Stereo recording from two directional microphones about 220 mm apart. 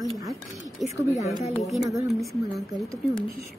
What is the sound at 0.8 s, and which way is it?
Speech, centre (ahead or behind).